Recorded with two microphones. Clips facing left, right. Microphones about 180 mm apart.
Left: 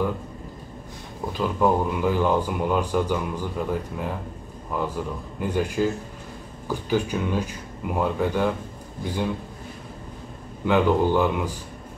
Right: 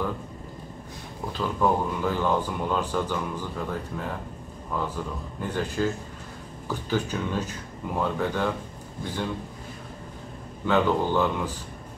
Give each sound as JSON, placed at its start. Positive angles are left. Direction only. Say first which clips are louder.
{"t": 1.4, "sound": "speech", "louder": "left 3 dB", "side_deg": 10}
{"t": 10.6, "sound": "speech", "louder": "left 3 dB", "side_deg": 10}